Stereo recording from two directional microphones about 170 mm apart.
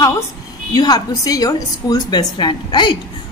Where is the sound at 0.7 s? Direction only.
25° left (ahead or behind).